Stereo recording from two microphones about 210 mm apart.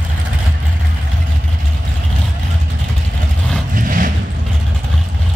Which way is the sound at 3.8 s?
40° right (ahead or behind).